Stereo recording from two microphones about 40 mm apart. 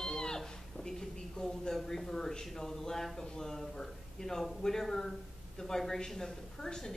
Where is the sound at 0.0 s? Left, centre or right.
Centre.